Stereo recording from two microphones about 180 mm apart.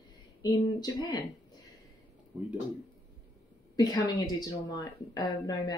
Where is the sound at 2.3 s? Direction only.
5° right (ahead or behind).